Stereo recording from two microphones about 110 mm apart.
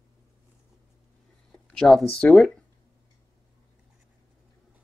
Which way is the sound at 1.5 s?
5° left (ahead or behind).